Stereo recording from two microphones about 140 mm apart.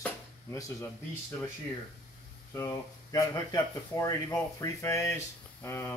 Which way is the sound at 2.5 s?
25° left (ahead or behind).